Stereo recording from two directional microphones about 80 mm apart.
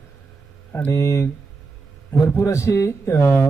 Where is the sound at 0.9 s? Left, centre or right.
Left.